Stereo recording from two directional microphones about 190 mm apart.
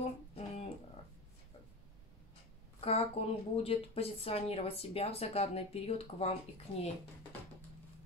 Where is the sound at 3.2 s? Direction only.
30° left (ahead or behind).